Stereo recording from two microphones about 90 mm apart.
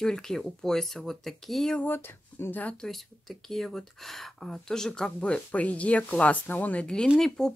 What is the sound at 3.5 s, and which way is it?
Speech, 5° left (ahead or behind).